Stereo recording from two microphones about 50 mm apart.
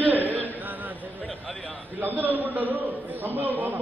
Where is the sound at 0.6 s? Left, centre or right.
Right.